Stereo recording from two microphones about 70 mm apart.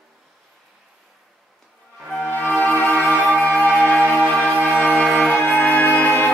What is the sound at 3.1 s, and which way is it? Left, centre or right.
Music, right.